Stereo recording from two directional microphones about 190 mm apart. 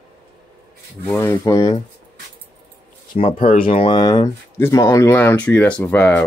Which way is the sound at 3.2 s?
30° left (ahead or behind).